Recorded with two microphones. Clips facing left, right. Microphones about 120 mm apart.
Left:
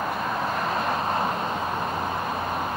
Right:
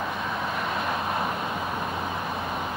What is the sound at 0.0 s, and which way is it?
Vehicle, 40° left (ahead or behind).